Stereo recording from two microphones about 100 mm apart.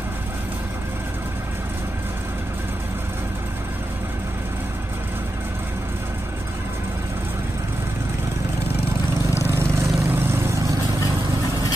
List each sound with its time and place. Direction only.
9.6 s vehicle: 25° right (ahead or behind)